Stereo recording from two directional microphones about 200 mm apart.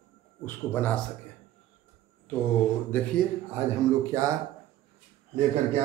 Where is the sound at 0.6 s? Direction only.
10° left (ahead or behind).